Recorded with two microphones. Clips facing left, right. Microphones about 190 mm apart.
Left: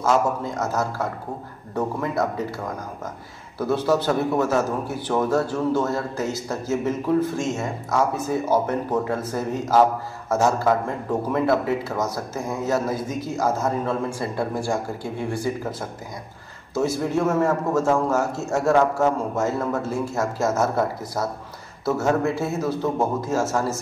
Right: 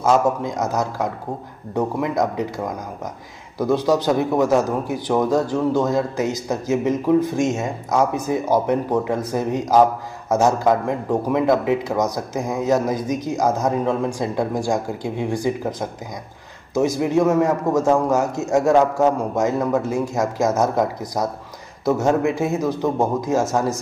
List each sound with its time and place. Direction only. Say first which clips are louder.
0.0 s speech: right 3 dB; 15° right (ahead or behind)